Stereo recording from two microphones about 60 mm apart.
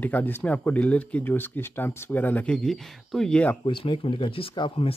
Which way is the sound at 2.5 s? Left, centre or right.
Centre.